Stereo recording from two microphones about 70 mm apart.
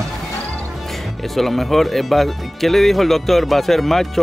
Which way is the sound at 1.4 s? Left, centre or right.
Centre.